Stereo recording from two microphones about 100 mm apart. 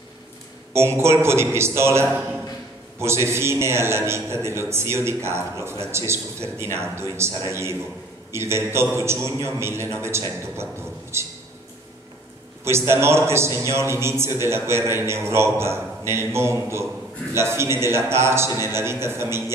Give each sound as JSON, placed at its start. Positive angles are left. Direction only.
{"t": 0.7, "sound": "a man's voice", "side_deg": -25}
{"t": 12.6, "sound": "a man's voice", "side_deg": -25}